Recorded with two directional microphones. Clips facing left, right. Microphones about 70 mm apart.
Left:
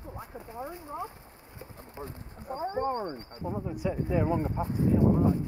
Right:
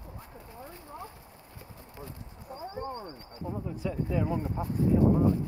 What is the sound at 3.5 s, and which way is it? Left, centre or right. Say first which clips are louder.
Speech: left 3 dB; centre.